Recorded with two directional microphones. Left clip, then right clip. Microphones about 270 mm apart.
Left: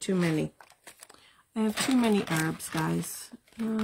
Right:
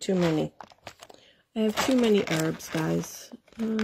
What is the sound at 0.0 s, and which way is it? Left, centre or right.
Speech, centre.